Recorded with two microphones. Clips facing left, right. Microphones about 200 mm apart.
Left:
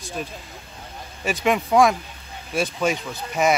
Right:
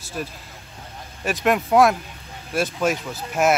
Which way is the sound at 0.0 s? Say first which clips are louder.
Even; 5° right (ahead or behind).